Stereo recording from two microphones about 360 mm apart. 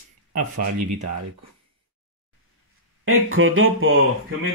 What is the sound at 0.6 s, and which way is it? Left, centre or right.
Speech, right.